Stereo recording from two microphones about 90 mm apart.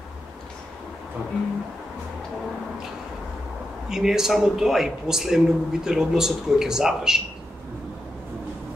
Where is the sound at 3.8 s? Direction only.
5° right (ahead or behind).